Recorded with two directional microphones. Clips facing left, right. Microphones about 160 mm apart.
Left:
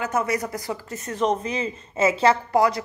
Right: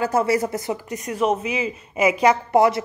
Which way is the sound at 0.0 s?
30° right (ahead or behind).